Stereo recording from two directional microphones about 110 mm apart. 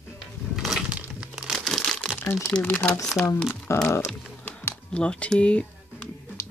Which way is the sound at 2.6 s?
20° left (ahead or behind).